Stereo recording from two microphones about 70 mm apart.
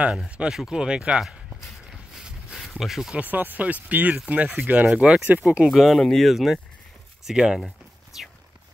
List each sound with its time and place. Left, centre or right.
0.3 s speech: centre
1.9 s a sound: centre
2.8 s speech: centre
3.2 s speech: right
5.7 s speech: centre